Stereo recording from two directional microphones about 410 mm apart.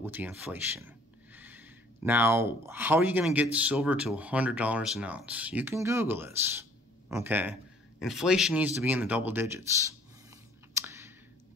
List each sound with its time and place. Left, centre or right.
0.0 s speech: centre
10.7 s clicking: centre